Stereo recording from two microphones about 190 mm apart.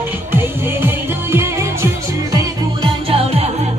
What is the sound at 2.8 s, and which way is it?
Music, 30° right (ahead or behind).